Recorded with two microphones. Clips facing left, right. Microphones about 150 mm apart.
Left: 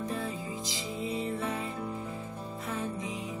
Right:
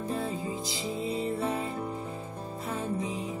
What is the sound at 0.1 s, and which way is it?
Music, 30° right (ahead or behind).